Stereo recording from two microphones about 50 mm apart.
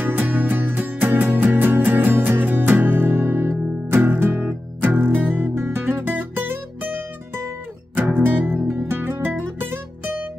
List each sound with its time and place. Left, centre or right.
0.3 s music: right